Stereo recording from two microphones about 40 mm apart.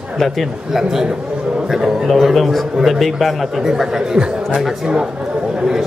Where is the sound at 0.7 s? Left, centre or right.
Centre.